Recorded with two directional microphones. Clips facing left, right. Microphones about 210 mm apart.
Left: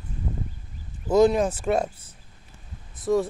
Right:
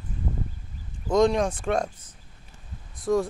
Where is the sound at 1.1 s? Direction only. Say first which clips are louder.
Left 2 dB; 5° left (ahead or behind).